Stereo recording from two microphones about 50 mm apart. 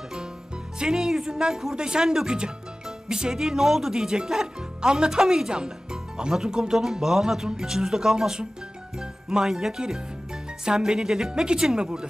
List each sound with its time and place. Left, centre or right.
0.7 s speech: centre